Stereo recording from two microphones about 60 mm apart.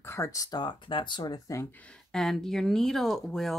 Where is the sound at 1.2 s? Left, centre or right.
Left.